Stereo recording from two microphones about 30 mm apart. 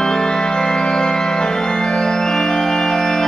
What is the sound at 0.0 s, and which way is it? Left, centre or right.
Music, left.